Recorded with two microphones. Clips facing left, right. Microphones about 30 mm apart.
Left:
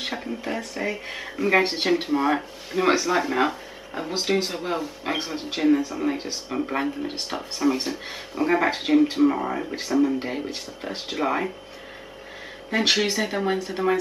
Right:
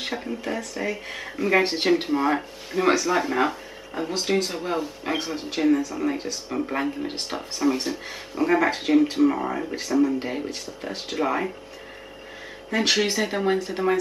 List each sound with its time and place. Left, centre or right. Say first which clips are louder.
0.0 s speech: even; centre
7.7 s speech: even; centre
10.5 s speech: even; centre
11.1 s speech: even; centre
12.7 s speech: even; centre